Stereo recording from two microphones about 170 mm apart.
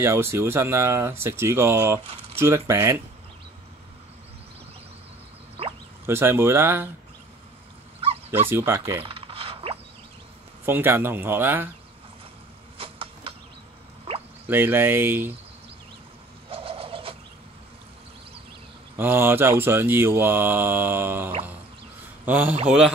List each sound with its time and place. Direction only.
0.0 s mantra: 15° right (ahead or behind)
6.0 s mantra: 15° right (ahead or behind)
8.3 s mantra: 15° right (ahead or behind)
9.0 s mechanisms: 35° right (ahead or behind)
10.6 s mantra: 10° right (ahead or behind)
12.7 s mechanisms: 30° right (ahead or behind)
14.0 s drip: 35° right (ahead or behind)
14.5 s mantra: 10° right (ahead or behind)
16.4 s turkey: 35° right (ahead or behind)
18.9 s mantra: 10° right (ahead or behind)
22.2 s a man's voice: 10° right (ahead or behind)